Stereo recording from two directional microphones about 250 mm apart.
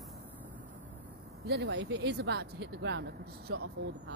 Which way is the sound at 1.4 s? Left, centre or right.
Right.